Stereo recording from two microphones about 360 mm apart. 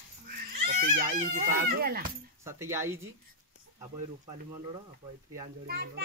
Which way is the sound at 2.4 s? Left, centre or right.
Centre.